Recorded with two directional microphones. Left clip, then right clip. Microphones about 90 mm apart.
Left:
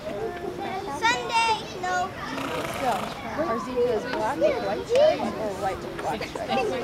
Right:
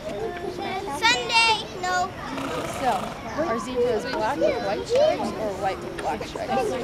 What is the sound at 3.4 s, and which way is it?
A child's voice, 35° right (ahead or behind).